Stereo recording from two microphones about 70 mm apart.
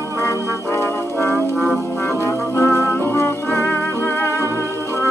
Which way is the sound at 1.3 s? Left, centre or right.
Centre.